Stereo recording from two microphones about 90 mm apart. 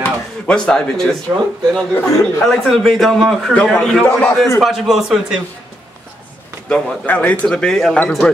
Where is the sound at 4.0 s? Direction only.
25° left (ahead or behind).